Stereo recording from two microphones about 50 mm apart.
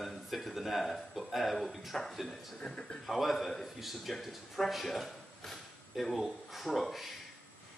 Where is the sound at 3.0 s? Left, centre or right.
Centre.